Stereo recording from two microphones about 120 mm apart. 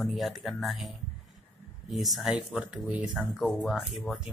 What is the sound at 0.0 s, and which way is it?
Speech, centre (ahead or behind).